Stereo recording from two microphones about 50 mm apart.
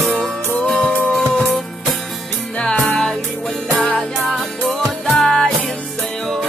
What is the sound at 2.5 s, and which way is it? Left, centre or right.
Music, left.